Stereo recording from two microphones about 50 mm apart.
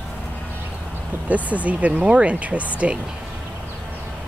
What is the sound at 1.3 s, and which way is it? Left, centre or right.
Speech, right.